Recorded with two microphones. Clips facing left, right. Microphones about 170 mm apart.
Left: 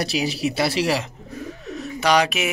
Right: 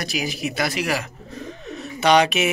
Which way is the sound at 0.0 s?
30° left (ahead or behind).